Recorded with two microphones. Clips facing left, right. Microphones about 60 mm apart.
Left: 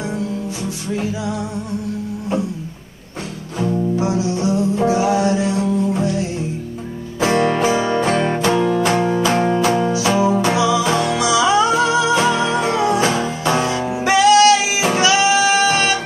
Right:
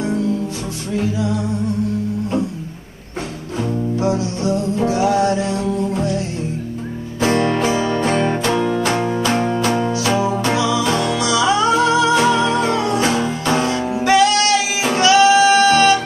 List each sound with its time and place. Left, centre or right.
0.9 s music: centre
3.9 s music: centre
7.2 s music: centre
13.7 s music: centre